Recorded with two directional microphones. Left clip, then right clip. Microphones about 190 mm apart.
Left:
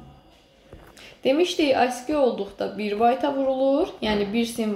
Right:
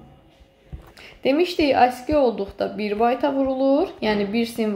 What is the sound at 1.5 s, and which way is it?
A woman's voice, 20° right (ahead or behind).